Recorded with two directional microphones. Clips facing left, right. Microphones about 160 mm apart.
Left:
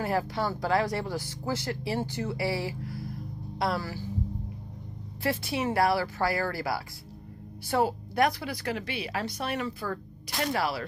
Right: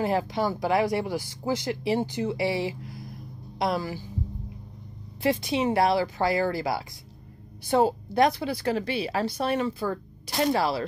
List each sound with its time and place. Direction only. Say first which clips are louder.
0.0 s speech: right 3 dB; 20° right (ahead or behind)
5.2 s a woman's voice: right 5 dB; 20° right (ahead or behind)